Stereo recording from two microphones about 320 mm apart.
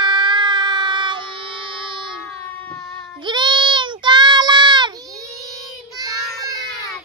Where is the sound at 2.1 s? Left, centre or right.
Centre.